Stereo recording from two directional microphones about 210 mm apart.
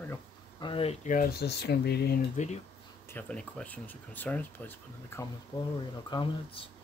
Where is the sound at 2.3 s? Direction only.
35° left (ahead or behind).